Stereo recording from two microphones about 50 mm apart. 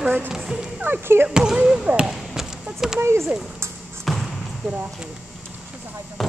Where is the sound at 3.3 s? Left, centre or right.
Centre.